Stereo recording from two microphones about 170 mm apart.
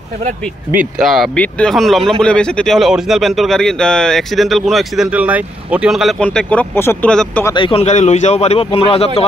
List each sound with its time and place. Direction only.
0.9 s speech: centre (ahead or behind)
7.5 s a man's voice: 30° left (ahead or behind)